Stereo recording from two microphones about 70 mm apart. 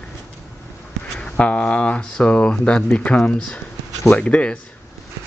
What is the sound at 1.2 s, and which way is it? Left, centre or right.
Speech, centre.